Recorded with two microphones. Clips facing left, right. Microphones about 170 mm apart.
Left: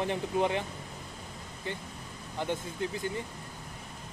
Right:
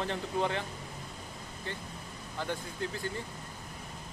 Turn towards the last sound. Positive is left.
turn(degrees=20)  # may be behind; listen again after turning